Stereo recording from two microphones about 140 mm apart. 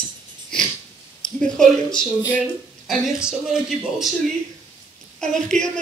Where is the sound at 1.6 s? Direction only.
5° left (ahead or behind).